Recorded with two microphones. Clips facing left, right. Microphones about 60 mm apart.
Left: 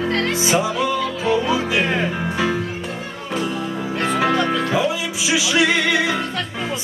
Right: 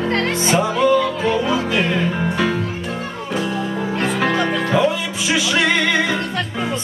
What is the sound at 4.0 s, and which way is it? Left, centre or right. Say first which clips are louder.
Music: left 1 dB; centre.